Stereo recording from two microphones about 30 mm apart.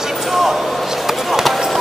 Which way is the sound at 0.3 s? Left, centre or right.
Centre.